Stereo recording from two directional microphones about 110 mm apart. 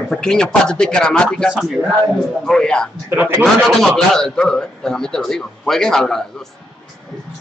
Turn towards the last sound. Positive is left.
turn(degrees=5)  # may be behind; listen again after turning